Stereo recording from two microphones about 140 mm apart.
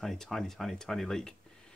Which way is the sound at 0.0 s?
Centre (ahead or behind).